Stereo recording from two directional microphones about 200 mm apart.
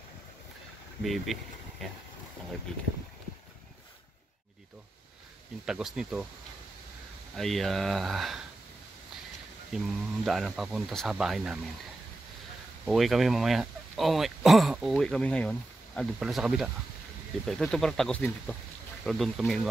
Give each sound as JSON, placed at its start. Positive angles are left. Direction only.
{"t": 1.0, "sound": "speech", "side_deg": 0}
{"t": 5.7, "sound": "speech", "side_deg": 0}
{"t": 7.3, "sound": "speech", "side_deg": 0}
{"t": 9.7, "sound": "speech", "side_deg": 0}
{"t": 12.8, "sound": "speech", "side_deg": 0}